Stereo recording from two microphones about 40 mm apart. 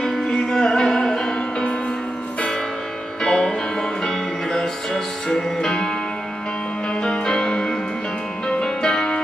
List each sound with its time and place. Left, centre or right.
0.0 s music: centre
3.2 s music: centre
6.9 s music: left